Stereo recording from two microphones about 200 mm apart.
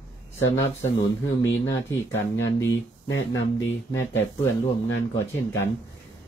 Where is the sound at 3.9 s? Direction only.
15° left (ahead or behind).